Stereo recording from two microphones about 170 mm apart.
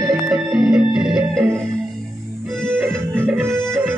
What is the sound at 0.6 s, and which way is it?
Music, centre (ahead or behind).